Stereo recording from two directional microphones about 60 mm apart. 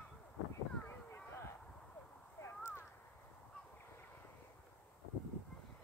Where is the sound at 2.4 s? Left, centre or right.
Left.